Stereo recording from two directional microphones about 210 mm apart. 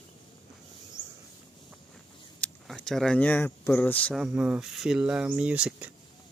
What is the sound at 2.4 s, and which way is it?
Speech, centre (ahead or behind).